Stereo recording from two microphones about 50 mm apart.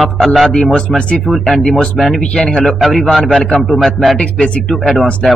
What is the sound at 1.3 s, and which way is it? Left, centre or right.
Speech, centre.